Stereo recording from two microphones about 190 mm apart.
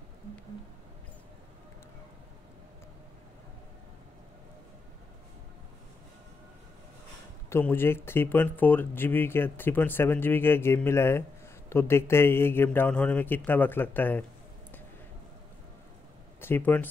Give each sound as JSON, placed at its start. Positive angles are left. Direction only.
{"t": 7.4, "sound": "speech", "side_deg": 10}
{"t": 16.3, "sound": "speech", "side_deg": 10}